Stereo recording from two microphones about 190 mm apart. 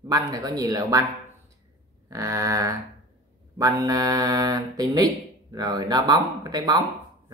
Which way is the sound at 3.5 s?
20° right (ahead or behind).